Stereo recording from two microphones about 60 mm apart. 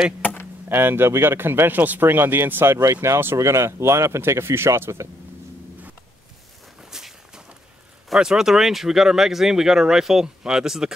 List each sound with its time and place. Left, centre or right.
0.7 s speech: right
3.3 s speech: right
6.8 s walk: centre
8.1 s speech: centre